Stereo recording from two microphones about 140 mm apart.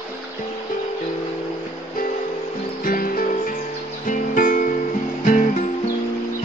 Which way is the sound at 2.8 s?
85° left.